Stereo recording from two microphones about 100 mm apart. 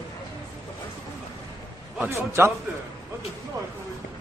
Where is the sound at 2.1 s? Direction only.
25° right (ahead or behind).